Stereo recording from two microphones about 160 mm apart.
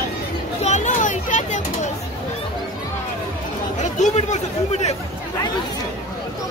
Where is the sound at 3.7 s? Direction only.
50° left (ahead or behind).